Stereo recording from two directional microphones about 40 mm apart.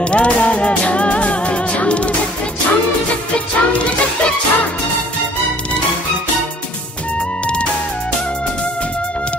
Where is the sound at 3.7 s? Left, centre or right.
Left.